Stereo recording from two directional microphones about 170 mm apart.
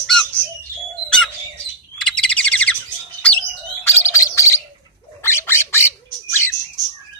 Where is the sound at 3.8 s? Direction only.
15° left (ahead or behind).